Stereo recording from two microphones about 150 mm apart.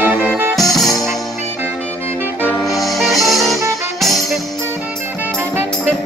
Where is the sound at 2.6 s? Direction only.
Centre (ahead or behind).